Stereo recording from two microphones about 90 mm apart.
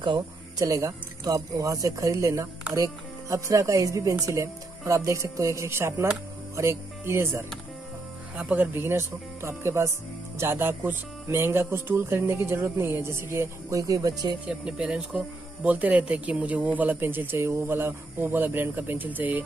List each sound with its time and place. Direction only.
0.6 s speech: 40° right (ahead or behind)
8.4 s speech: 20° right (ahead or behind); by 14.3 s 45° right (ahead or behind)
14.4 s speech: 10° right (ahead or behind)